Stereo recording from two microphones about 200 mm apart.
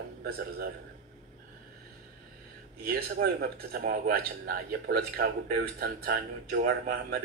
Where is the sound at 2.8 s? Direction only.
50° right (ahead or behind).